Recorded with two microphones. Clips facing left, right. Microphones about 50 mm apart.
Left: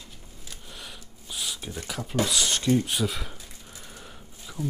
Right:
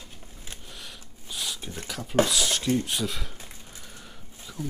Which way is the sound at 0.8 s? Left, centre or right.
Centre.